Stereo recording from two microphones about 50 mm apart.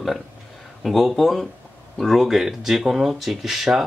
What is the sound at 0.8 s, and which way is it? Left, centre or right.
Speech, centre.